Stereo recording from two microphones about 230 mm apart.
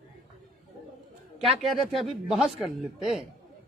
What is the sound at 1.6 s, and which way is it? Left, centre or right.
Speech, centre.